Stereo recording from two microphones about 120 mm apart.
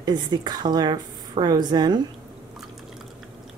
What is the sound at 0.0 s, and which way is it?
Speech, 35° right (ahead or behind).